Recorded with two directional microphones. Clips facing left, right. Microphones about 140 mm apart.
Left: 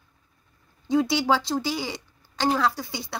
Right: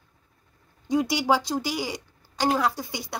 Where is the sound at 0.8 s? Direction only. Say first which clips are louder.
Left 1 dB; 15° right (ahead or behind).